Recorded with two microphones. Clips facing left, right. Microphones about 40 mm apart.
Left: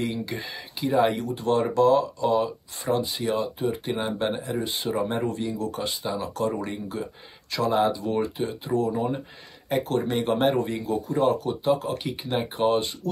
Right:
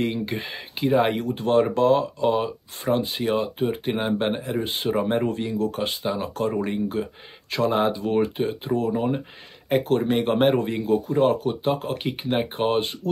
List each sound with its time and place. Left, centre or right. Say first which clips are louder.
0.0 s speech: right 3 dB; right